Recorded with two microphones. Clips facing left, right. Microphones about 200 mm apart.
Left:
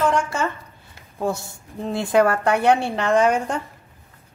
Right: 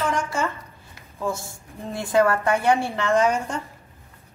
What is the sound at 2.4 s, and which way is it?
A woman's voice, 65° left (ahead or behind).